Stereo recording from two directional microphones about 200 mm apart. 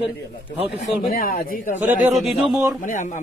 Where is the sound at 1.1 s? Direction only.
45° left (ahead or behind).